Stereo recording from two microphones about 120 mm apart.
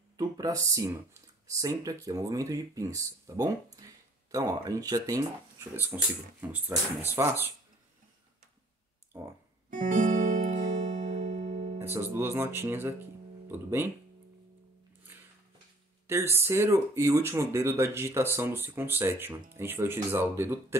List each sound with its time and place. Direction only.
0.2 s speech: 30° right (ahead or behind)
9.1 s speech: 20° right (ahead or behind)
9.7 s music: 90° right; by 11.8 s 70° right (ahead or behind)
11.8 s speech: 20° right (ahead or behind)
16.1 s speech: 20° right (ahead or behind)